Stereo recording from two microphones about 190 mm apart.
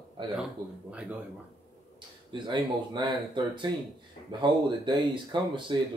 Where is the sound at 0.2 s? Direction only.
25° right (ahead or behind).